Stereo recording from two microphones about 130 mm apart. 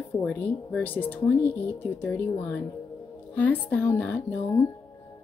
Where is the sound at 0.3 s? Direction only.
10° left (ahead or behind).